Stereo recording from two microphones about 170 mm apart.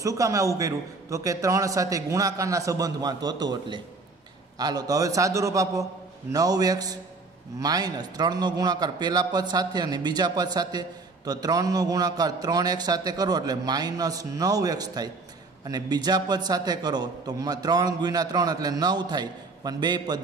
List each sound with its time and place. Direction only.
0.0 s a man's voice: 20° right (ahead or behind)